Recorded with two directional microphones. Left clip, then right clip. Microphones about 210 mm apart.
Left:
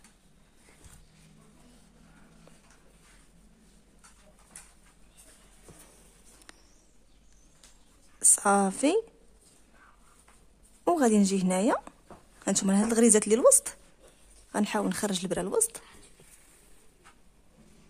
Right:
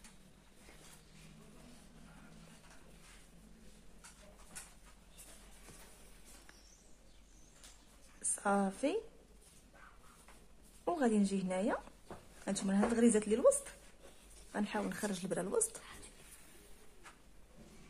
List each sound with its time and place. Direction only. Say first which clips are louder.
8.4 s a woman's voice: left 8 dB; 45° left (ahead or behind)
10.9 s a woman's voice: left 10 dB; 45° left (ahead or behind)